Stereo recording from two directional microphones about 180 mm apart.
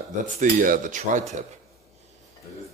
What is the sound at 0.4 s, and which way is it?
Speech, 45° right (ahead or behind).